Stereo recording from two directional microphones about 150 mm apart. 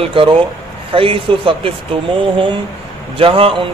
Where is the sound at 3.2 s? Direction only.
35° right (ahead or behind).